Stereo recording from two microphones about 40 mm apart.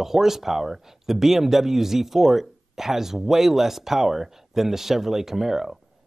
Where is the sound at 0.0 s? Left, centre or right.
Centre.